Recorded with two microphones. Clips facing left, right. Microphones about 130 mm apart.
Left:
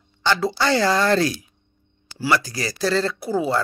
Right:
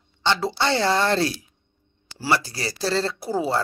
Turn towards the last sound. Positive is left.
turn(degrees=-35)  # may be behind; listen again after turning